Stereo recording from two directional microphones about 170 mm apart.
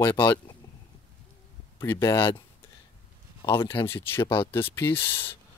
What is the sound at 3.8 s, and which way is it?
Speech, 15° left (ahead or behind).